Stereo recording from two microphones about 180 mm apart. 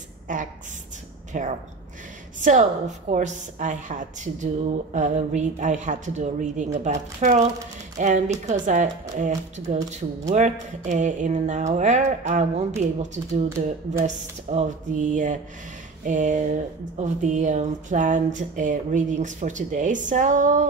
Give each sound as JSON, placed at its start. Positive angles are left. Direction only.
{"t": 0.3, "sound": "speech", "side_deg": -45}